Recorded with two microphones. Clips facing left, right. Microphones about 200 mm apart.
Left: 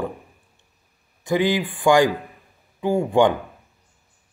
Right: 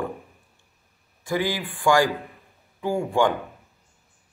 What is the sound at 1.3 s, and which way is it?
A man's voice, 20° left (ahead or behind).